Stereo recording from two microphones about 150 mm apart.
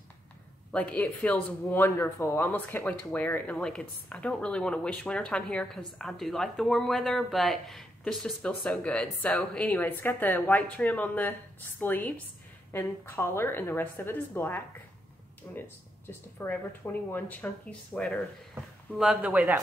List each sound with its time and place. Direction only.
0.7 s speech: 10° left (ahead or behind)
1.6 s speech: 15° left (ahead or behind); by 19.6 s 5° right (ahead or behind)